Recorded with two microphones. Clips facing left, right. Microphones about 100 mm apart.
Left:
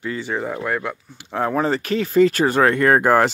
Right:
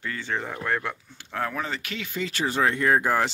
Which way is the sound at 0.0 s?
15° left (ahead or behind).